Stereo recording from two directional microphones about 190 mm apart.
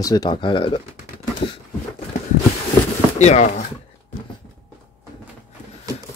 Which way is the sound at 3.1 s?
35° left (ahead or behind).